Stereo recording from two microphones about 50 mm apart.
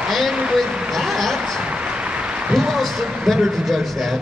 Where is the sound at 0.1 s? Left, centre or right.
Centre.